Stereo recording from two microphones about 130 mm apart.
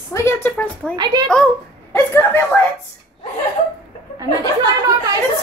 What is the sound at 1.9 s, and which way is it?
Speech, 20° left (ahead or behind).